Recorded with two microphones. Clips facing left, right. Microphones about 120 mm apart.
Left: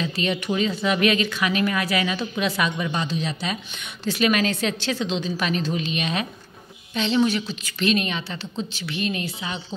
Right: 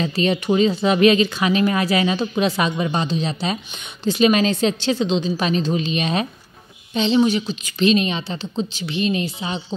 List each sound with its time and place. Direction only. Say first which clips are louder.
0.0 s speech: right 5 dB; 35° right (ahead or behind)